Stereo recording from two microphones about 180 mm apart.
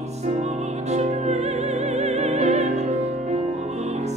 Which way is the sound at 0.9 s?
40° right (ahead or behind).